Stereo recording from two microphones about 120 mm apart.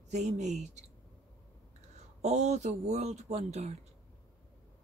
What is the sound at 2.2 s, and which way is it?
Speech, 65° right (ahead or behind).